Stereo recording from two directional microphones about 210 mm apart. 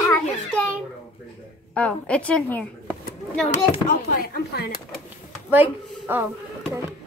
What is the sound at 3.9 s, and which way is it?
Speech, 45° left (ahead or behind).